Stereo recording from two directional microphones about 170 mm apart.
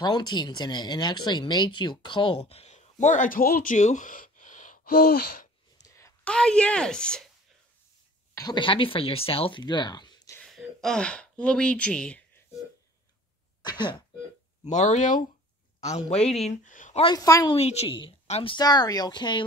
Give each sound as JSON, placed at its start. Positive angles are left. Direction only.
{"t": 0.0, "sound": "speech", "side_deg": 25}
{"t": 3.7, "sound": "gasp", "side_deg": 45}
{"t": 5.8, "sound": "a sound", "side_deg": 20}
{"t": 6.2, "sound": "a woman's voice", "side_deg": 5}
{"t": 8.4, "sound": "speech", "side_deg": 25}
{"t": 10.4, "sound": "speech", "side_deg": 0}
{"t": 13.6, "sound": "throat clearing", "side_deg": 25}
{"t": 14.6, "sound": "a man's voice", "side_deg": 45}
{"t": 17.0, "sound": "speech", "side_deg": 20}
{"t": 17.6, "sound": "speech", "side_deg": 40}